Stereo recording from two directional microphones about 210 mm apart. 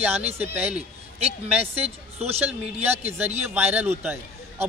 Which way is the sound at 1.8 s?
30° right (ahead or behind).